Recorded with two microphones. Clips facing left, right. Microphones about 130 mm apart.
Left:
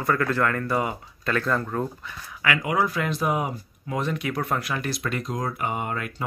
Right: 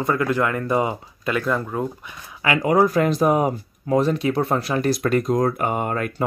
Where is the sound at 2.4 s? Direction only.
35° right (ahead or behind).